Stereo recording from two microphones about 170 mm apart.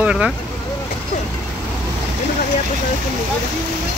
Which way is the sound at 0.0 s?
5° right (ahead or behind).